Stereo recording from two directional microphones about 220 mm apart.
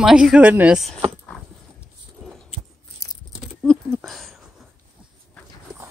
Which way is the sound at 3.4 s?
Centre (ahead or behind).